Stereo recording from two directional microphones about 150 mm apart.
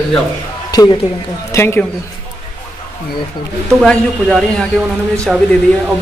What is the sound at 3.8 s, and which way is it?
Speech, 5° left (ahead or behind).